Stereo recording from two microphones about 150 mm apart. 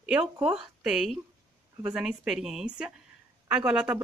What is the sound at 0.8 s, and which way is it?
A woman's voice, 5° right (ahead or behind).